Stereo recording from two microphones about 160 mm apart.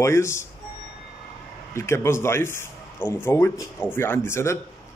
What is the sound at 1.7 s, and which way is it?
Speech, 15° left (ahead or behind).